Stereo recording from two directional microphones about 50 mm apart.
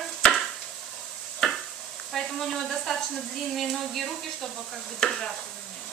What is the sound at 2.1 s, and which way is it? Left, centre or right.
Speech, centre.